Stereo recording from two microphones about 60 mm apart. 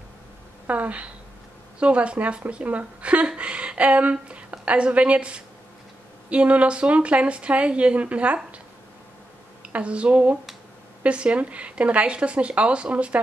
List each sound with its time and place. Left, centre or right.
0.7 s speech: right
9.6 s speech: right